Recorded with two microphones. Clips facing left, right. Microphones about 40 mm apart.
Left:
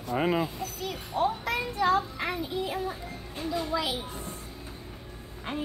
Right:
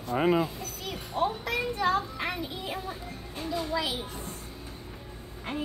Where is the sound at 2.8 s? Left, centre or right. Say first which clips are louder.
Left 2 dB; centre.